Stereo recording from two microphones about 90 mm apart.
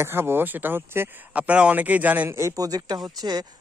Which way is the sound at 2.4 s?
40° right (ahead or behind).